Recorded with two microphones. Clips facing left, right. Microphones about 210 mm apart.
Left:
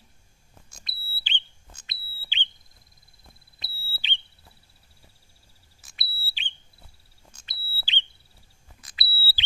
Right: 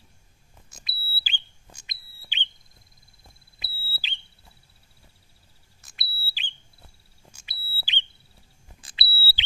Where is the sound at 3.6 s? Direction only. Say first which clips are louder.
Right 2 dB; 5° right (ahead or behind).